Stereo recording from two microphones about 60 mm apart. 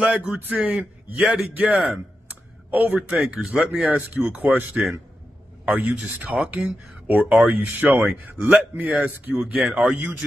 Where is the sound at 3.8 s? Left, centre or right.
Right.